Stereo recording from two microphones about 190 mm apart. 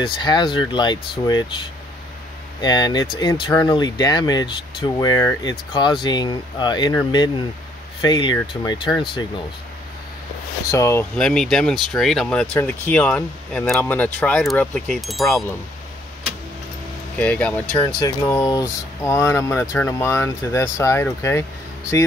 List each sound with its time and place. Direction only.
0.0 s speech: 25° left (ahead or behind)
2.6 s speech: 20° left (ahead or behind)
10.7 s speech: 15° left (ahead or behind)
11.1 s speech: 5° left (ahead or behind)
17.2 s speech: 5° left (ahead or behind)
17.9 s speech: 20° left (ahead or behind)